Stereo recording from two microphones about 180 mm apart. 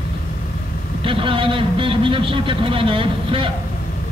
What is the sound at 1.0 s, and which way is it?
A man's voice, 30° right (ahead or behind).